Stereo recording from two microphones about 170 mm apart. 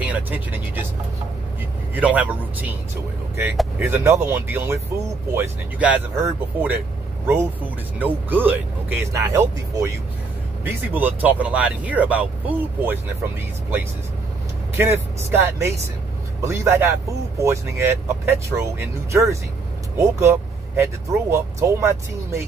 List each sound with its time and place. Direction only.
0.0 s speech: 10° right (ahead or behind)
2.0 s speech: 10° right (ahead or behind)
3.8 s speech: 15° right (ahead or behind)
8.0 s speech: 10° right (ahead or behind)